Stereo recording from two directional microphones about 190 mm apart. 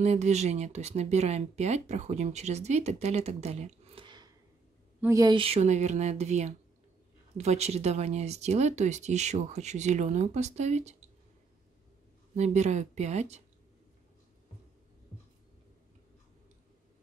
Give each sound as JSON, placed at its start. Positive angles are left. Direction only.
{"t": 0.0, "sound": "speech", "side_deg": -35}
{"t": 12.4, "sound": "speech", "side_deg": -35}